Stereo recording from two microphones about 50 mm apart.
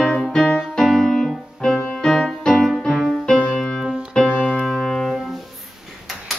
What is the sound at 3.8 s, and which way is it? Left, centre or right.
Keyboard, centre.